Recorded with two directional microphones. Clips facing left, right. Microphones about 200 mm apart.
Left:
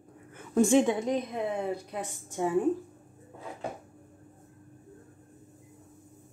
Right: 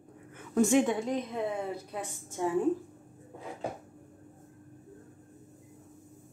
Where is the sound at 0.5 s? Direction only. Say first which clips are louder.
Left 2 dB; 30° left (ahead or behind).